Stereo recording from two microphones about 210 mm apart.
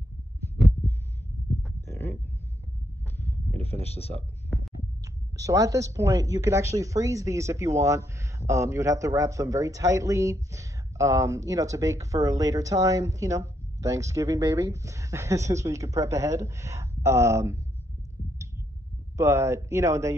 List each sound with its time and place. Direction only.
1.9 s a sound: 10° left (ahead or behind)
4.5 s heart sounds: centre (ahead or behind)
5.3 s speech: 15° right (ahead or behind)
19.1 s speech: 15° right (ahead or behind)